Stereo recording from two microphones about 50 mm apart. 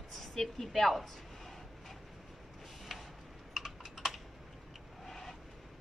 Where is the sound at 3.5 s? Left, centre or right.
Centre.